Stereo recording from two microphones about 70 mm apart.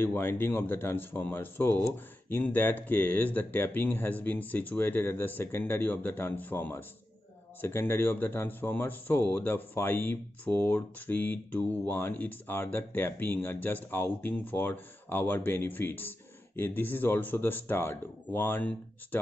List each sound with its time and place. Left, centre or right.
0.0 s speech: left